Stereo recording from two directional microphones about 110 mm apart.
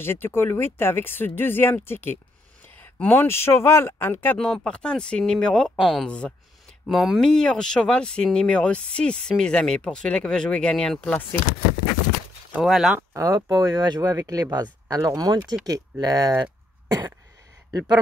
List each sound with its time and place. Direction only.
0.0 s speech: 20° left (ahead or behind)
12.5 s speech: 5° right (ahead or behind)
13.1 s speech: 30° right (ahead or behind)